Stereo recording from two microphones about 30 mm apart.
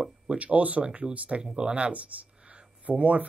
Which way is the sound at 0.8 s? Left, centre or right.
Right.